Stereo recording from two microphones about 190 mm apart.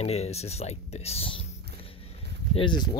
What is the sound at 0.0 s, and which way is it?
Speech, 35° left (ahead or behind).